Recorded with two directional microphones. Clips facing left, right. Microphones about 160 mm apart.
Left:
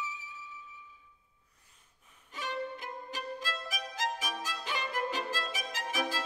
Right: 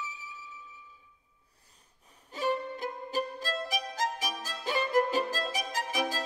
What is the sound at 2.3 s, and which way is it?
Violin, 35° right (ahead or behind).